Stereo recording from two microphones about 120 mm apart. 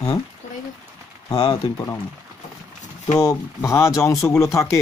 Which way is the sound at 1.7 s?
30° left (ahead or behind).